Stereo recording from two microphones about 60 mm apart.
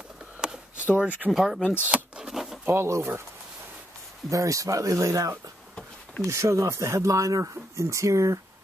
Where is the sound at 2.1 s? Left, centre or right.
Centre.